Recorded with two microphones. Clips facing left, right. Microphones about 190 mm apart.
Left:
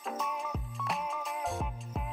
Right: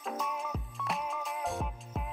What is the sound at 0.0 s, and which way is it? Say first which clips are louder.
Music: even; centre (ahead or behind).